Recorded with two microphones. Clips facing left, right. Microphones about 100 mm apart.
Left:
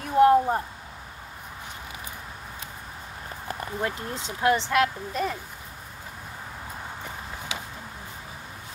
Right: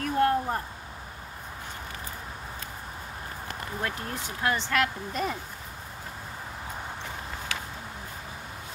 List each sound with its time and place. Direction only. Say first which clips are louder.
0.0 s a sound: left 6 dB; 20° left (ahead or behind)
3.4 s speech: left 4 dB; 20° left (ahead or behind)
5.1 s speech: left 2 dB; 5° right (ahead or behind)